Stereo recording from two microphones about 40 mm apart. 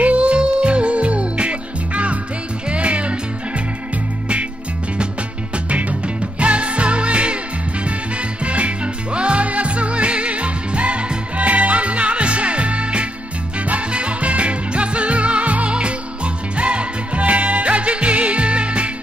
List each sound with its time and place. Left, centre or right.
0.0 s music: right
5.7 s music: right
8.5 s music: right